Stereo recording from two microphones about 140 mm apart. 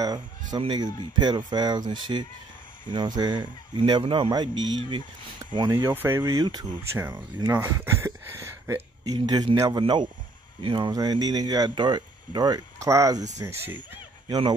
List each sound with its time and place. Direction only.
0.0 s speech: 30° right (ahead or behind)
5.8 s speech: 15° right (ahead or behind)
6.2 s speech: 30° right (ahead or behind)
6.8 s speech: 20° right (ahead or behind)